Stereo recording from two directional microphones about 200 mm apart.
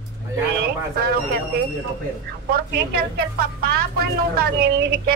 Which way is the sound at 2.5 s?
50° right (ahead or behind).